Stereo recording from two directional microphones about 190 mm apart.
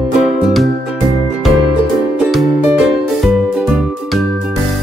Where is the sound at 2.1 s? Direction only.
Centre (ahead or behind).